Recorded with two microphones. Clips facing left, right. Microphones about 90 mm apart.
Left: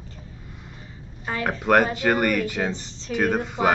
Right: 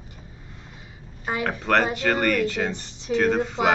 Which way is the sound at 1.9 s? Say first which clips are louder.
Left 1 dB; 10° left (ahead or behind).